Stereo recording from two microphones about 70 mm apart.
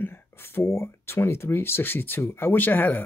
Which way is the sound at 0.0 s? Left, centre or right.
Left.